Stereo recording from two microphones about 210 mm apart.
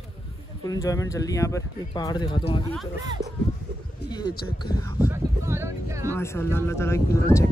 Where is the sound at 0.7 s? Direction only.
15° left (ahead or behind).